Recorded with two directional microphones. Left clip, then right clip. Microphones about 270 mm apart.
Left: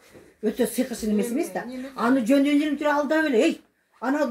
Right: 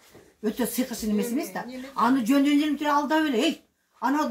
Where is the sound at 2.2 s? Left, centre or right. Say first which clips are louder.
Left 2 dB; centre.